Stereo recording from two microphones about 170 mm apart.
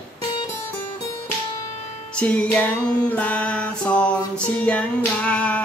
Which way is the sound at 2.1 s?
10° left (ahead or behind).